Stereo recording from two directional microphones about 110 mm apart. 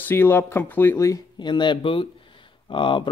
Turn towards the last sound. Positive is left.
turn(degrees=50)  # may be behind; listen again after turning